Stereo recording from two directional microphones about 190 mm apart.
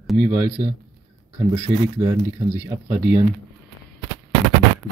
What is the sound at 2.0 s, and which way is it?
Speech, 15° right (ahead or behind).